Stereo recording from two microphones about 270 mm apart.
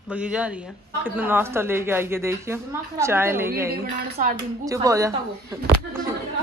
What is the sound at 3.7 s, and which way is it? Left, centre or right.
Speech, right.